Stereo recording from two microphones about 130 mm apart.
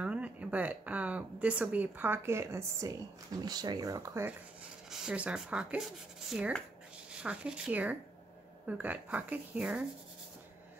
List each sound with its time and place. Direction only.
0.0 s speech: 10° right (ahead or behind)
4.9 s speech: 5° right (ahead or behind)